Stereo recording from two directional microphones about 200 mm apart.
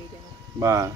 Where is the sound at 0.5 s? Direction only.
15° right (ahead or behind).